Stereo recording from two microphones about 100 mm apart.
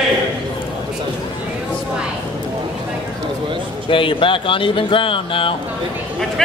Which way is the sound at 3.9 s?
60° left (ahead or behind).